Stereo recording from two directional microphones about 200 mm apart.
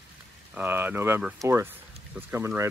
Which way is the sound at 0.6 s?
10° right (ahead or behind).